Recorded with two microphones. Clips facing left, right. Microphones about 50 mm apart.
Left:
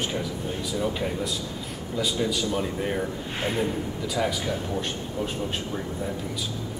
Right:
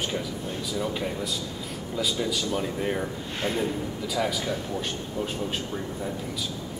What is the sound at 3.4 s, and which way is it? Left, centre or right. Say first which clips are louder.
Speech: left 1 dB; centre.